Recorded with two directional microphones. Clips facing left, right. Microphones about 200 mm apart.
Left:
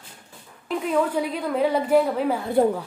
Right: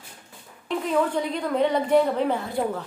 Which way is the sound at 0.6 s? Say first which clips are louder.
Left 1 dB; 5° left (ahead or behind).